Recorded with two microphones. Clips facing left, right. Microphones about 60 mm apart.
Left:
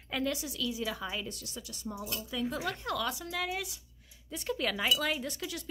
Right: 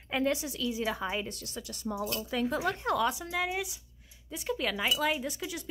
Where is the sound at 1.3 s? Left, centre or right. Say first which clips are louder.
Right 3 dB; right.